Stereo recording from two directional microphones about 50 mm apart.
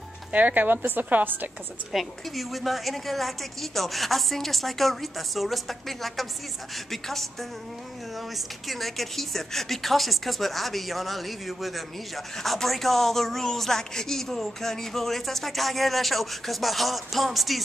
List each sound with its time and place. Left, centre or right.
0.3 s speech: right
1.9 s a woman's voice: centre
8.4 s a woman's voice: centre